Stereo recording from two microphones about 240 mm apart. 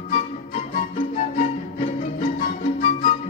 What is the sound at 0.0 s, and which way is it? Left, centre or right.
Music, left.